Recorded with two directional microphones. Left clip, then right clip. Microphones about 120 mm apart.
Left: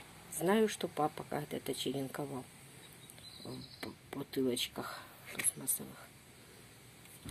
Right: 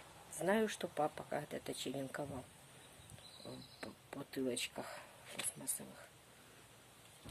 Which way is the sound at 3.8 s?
5° right (ahead or behind).